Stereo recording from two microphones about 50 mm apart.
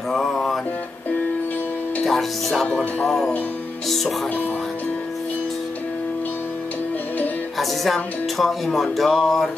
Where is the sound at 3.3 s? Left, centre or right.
Left.